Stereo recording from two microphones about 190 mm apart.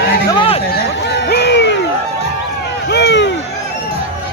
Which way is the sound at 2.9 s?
65° left (ahead or behind).